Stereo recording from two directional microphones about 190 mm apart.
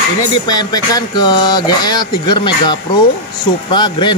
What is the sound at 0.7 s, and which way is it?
Speech, 20° left (ahead or behind).